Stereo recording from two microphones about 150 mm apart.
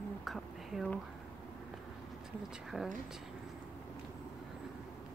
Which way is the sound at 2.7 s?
5° right (ahead or behind).